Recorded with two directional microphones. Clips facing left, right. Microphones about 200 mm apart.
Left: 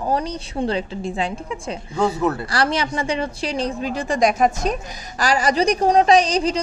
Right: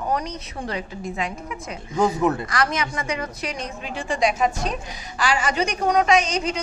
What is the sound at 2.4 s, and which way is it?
A woman's voice, 30° left (ahead or behind).